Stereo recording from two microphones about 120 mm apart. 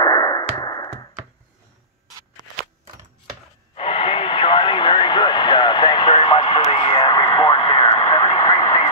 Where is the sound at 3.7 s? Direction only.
50° left (ahead or behind).